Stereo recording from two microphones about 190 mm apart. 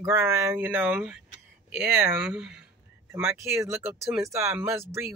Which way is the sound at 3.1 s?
15° right (ahead or behind).